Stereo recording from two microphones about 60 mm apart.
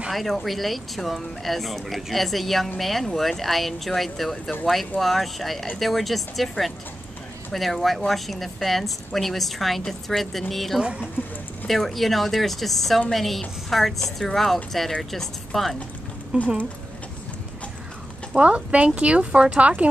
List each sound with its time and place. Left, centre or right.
0.1 s speech: centre
10.8 s speech: centre
11.6 s speech: centre
16.3 s speech: right
18.3 s speech: right